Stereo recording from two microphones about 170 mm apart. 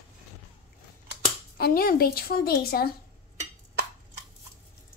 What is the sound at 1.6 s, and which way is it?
A woman's voice, 60° left (ahead or behind).